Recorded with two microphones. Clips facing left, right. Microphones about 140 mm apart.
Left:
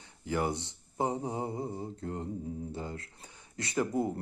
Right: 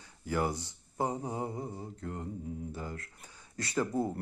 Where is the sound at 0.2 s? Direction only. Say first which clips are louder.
Left 1 dB; 20° left (ahead or behind).